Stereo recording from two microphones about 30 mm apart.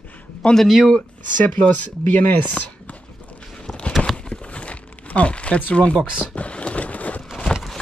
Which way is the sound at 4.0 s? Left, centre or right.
Left.